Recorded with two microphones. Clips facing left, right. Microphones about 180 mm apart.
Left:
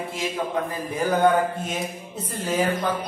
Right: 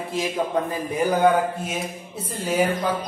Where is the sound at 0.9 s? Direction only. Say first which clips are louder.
Right 1 dB; 10° right (ahead or behind).